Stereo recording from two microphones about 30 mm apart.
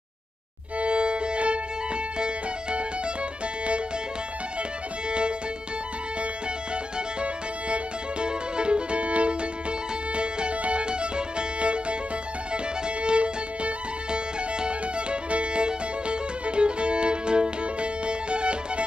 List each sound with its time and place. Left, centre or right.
0.7 s music: right
7.7 s music: right